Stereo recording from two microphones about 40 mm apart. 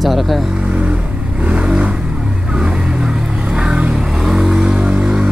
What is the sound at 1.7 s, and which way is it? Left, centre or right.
Vehicle, right.